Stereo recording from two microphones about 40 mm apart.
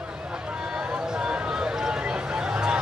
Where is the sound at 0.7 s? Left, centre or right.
Centre.